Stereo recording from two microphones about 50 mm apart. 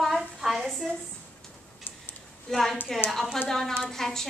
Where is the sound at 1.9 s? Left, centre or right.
Left.